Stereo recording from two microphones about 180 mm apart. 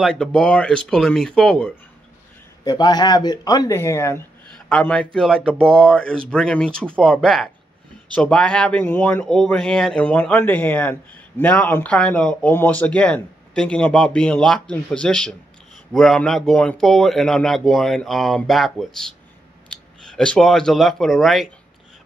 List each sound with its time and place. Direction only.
0.0 s speech: 5° left (ahead or behind)
2.6 s speech: 25° left (ahead or behind); by 21.5 s centre (ahead or behind)